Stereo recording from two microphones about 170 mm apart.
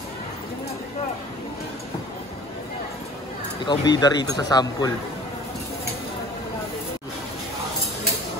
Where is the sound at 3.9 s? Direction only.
25° left (ahead or behind).